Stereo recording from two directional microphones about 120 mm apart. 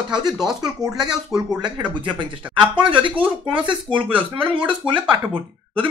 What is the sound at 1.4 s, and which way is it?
Speech, 40° right (ahead or behind).